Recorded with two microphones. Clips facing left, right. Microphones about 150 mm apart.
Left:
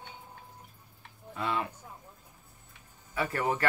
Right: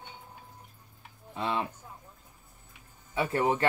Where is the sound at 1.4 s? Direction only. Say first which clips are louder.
Right 1 dB; 25° right (ahead or behind).